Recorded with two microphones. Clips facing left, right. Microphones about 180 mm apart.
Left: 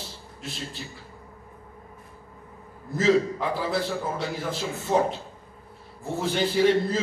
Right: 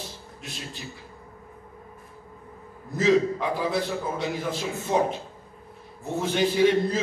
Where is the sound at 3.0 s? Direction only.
20° right (ahead or behind).